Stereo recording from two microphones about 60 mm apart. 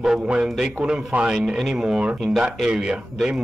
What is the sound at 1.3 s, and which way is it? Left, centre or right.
Speech, centre.